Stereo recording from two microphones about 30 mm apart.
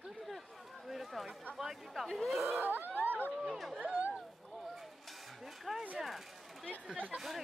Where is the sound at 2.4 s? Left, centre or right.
Right.